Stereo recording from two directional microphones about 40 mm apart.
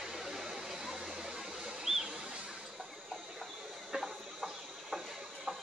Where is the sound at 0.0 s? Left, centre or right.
Centre.